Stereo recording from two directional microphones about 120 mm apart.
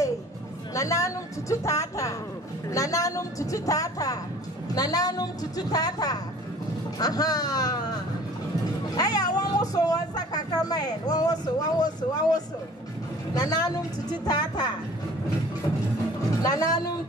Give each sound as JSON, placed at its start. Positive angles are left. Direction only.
{"t": 0.7, "sound": "a woman's voice", "side_deg": 25}
{"t": 8.9, "sound": "speech", "side_deg": 30}
{"t": 16.4, "sound": "speech", "side_deg": 30}